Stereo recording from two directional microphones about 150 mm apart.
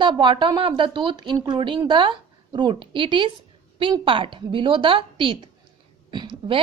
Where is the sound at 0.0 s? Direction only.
30° right (ahead or behind).